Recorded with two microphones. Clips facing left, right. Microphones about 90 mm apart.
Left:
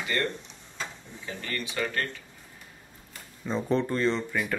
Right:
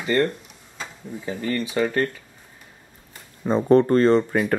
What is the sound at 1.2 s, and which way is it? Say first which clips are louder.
Speech: right 9 dB; 35° right (ahead or behind).